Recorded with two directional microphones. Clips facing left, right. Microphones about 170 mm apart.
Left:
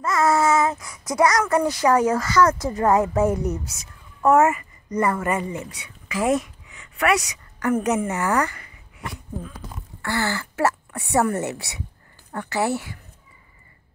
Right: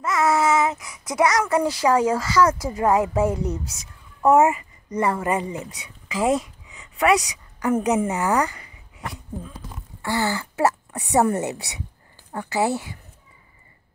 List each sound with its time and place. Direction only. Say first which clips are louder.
0.0 s a sound: left 1 dB; 5° right (ahead or behind)
1.1 s speech: left 1 dB; 20° right (ahead or behind)
1.4 s a child's voice: left 1 dB; 10° right (ahead or behind)
10.0 s speech: right 1 dB; 15° right (ahead or behind)